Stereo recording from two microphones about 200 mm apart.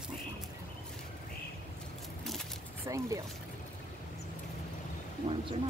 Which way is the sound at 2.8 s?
15° right (ahead or behind).